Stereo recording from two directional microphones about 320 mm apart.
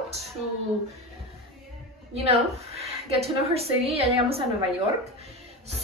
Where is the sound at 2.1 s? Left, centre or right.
Centre.